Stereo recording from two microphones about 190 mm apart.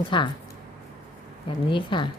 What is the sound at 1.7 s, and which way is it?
Speech, 25° left (ahead or behind).